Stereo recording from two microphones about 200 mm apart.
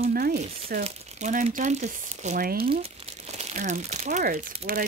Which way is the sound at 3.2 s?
35° right (ahead or behind).